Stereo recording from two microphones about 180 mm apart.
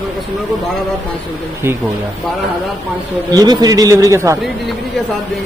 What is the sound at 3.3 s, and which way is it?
A man's voice, 20° right (ahead or behind).